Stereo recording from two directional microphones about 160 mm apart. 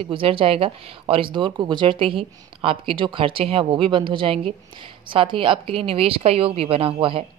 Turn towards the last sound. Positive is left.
turn(degrees=-35)  # may be behind; listen again after turning